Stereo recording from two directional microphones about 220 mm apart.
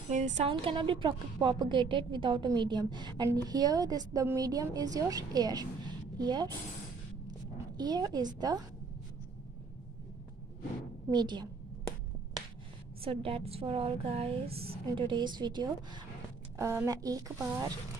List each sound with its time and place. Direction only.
0.1 s a woman's voice: 35° right (ahead or behind); by 8.6 s 20° right (ahead or behind)
11.1 s a woman's voice: 20° right (ahead or behind)
13.0 s a woman's voice: 25° right (ahead or behind)